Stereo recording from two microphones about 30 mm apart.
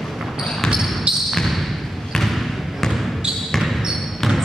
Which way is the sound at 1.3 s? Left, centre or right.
Centre.